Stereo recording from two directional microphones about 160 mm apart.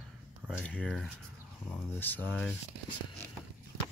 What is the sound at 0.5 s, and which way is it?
Speech, 5° left (ahead or behind).